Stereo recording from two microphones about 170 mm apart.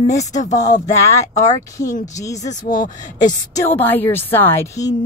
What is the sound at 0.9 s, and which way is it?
Speech, 20° left (ahead or behind).